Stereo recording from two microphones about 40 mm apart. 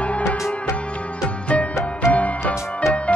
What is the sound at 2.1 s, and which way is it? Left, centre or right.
Music, left.